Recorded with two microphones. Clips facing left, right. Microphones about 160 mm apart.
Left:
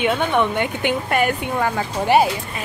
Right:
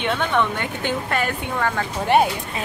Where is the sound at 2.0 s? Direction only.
5° left (ahead or behind).